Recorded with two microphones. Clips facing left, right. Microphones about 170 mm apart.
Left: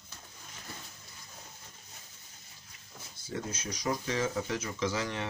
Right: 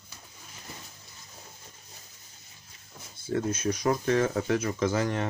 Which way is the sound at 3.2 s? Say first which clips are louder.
Right 10 dB; 55° right (ahead or behind).